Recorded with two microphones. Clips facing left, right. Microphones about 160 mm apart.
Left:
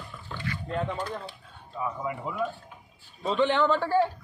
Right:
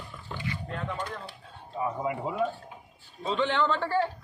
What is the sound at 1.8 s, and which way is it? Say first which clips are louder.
Speech: right 2 dB; 25° right (ahead or behind).